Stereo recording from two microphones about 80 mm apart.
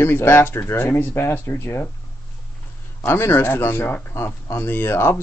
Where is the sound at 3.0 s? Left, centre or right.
Left.